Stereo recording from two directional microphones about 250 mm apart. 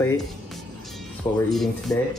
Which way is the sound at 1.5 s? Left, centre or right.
Centre.